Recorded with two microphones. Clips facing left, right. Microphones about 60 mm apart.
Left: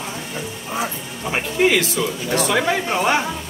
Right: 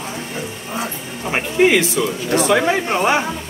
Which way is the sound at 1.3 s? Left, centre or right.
Right.